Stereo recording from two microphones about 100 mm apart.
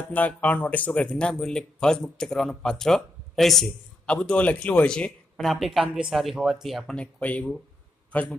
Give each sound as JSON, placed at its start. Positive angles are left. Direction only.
{"t": 0.1, "sound": "speech", "side_deg": 15}
{"t": 7.0, "sound": "a man's voice", "side_deg": 15}